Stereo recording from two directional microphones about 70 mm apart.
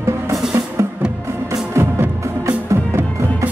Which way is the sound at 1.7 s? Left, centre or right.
Right.